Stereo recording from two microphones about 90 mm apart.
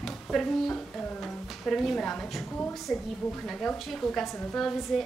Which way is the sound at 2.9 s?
10° left (ahead or behind).